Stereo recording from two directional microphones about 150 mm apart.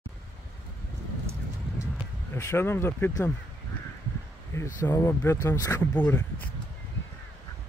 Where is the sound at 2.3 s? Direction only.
15° left (ahead or behind).